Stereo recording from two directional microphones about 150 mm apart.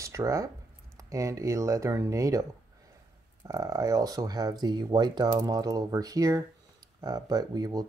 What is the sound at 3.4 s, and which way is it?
Speech, 25° right (ahead or behind).